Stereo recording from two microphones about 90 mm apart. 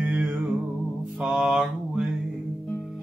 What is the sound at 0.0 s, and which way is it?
Music, 15° right (ahead or behind).